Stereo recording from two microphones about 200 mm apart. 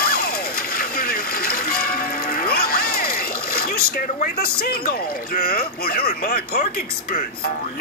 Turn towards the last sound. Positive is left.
turn(degrees=50)  # may be behind; listen again after turning